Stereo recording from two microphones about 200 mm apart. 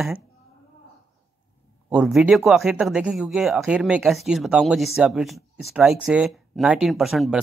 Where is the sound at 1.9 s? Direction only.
Centre (ahead or behind).